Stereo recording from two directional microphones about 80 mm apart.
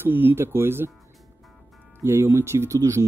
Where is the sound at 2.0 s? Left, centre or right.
Right.